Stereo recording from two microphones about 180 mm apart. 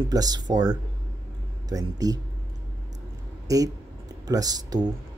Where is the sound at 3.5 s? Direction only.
20° right (ahead or behind).